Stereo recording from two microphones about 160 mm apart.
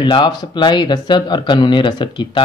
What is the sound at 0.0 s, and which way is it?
A man's voice, 30° left (ahead or behind).